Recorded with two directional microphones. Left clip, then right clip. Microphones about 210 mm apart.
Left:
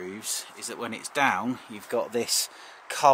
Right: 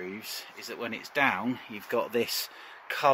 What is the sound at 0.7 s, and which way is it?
Speech, centre (ahead or behind).